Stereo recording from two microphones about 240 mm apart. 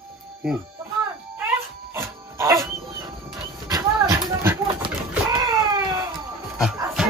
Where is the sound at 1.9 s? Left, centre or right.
Centre.